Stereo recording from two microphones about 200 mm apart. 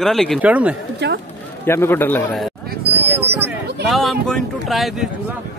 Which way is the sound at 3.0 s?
10° right (ahead or behind).